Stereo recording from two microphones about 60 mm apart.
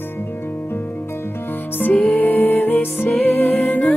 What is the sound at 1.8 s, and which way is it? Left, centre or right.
Music, left.